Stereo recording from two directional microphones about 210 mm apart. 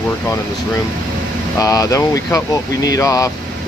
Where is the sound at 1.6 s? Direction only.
15° left (ahead or behind).